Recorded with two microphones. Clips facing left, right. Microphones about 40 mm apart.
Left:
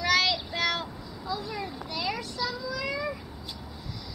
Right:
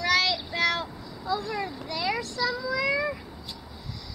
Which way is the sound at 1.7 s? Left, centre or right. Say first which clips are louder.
Right 2 dB; centre.